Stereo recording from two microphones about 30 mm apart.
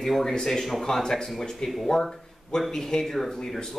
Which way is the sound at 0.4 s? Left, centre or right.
Centre.